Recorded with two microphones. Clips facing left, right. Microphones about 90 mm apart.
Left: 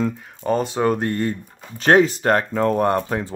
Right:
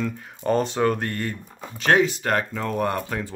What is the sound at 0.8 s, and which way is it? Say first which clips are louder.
Speech: left 3 dB; 20° left (ahead or behind).